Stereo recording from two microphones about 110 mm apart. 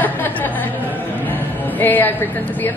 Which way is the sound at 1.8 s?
15° left (ahead or behind).